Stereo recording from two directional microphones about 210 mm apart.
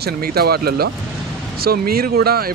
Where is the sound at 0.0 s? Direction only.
45° right (ahead or behind).